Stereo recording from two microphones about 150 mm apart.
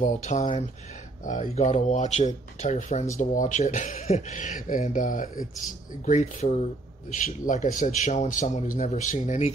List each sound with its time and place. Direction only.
0.0 s a man's voice: 50° left (ahead or behind)
6.0 s a man's voice: 50° left (ahead or behind)